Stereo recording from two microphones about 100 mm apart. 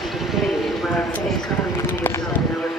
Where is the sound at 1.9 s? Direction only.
20° left (ahead or behind).